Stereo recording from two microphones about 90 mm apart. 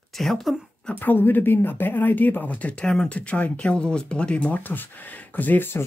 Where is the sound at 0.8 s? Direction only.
20° left (ahead or behind).